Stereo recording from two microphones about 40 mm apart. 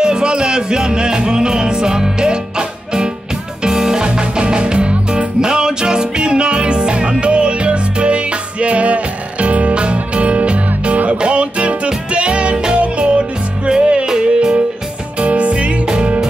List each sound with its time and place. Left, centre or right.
0.0 s music: right
15.1 s music: right